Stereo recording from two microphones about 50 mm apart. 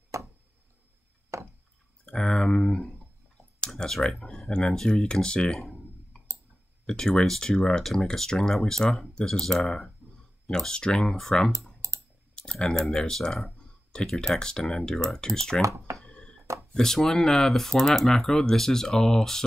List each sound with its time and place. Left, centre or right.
0.1 s tick-tock: right
1.3 s a sound: right
2.1 s speech: centre
3.6 s speech: centre
6.9 s speech: centre
11.8 s typing: right
12.4 s speech: centre
15.6 s speech: right
16.1 s a sound: centre
16.7 s speech: centre